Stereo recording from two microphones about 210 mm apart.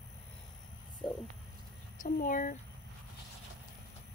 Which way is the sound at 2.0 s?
40° left (ahead or behind).